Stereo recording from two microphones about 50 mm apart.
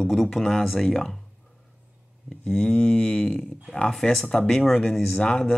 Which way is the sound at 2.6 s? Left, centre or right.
Left.